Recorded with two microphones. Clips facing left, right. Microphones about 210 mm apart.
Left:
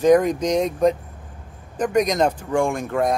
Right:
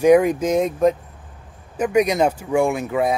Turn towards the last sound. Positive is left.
turn(degrees=-5)  # may be behind; listen again after turning